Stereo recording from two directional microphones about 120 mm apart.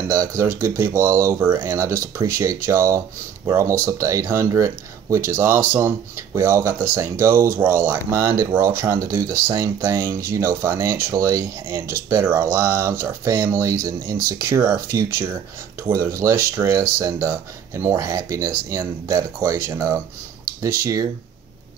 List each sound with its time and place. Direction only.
0.1 s speech: 25° right (ahead or behind)